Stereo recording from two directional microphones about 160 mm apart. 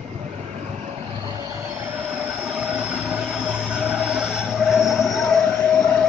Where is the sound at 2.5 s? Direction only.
5° right (ahead or behind).